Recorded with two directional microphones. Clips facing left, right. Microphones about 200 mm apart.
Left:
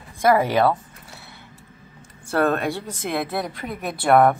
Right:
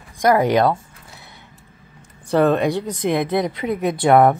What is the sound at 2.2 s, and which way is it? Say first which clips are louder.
Speech: right 5 dB; 15° right (ahead or behind).